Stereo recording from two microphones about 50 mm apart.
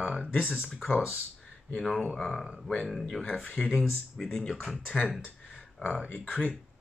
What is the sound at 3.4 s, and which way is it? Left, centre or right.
Speech, left.